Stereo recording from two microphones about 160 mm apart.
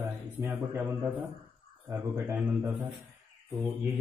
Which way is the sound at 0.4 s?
15° right (ahead or behind).